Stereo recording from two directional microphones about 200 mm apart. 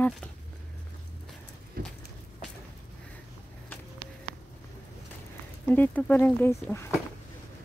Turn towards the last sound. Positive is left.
turn(degrees=10)  # may be behind; listen again after turning